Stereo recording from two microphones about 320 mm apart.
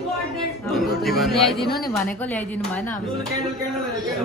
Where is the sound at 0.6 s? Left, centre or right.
Centre.